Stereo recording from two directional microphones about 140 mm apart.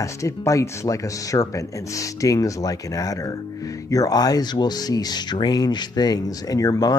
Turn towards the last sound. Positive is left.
turn(degrees=25)  # may be behind; listen again after turning